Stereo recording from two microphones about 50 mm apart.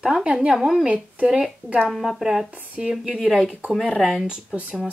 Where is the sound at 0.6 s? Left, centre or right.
Centre.